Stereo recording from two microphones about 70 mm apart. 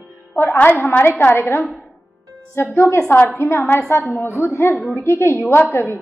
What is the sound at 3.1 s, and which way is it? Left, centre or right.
A woman's voice, left.